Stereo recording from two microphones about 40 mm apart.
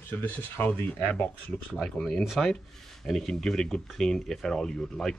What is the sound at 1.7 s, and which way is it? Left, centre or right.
Speech, centre.